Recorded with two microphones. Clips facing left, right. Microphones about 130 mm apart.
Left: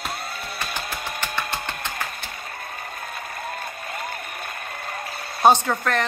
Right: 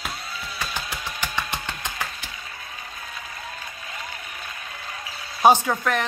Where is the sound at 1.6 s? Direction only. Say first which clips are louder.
Left 2 dB; 55° left (ahead or behind).